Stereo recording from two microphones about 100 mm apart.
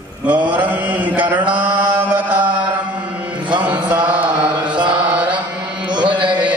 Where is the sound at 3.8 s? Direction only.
50° right (ahead or behind).